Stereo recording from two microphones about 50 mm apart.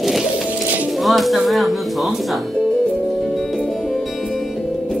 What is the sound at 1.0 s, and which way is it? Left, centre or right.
Speech, centre.